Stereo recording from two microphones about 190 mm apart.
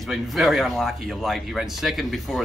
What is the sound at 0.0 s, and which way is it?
Speech, centre (ahead or behind).